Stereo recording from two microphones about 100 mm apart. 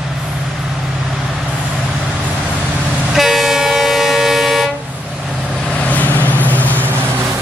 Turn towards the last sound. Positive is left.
turn(degrees=15)  # may be behind; listen again after turning